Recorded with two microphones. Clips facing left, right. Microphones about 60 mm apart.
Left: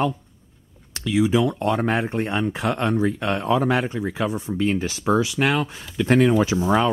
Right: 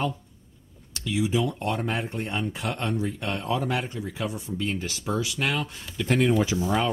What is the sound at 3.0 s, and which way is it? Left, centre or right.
Speech, left.